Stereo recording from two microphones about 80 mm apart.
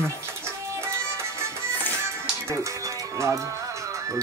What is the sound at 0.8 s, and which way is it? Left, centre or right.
Music, right.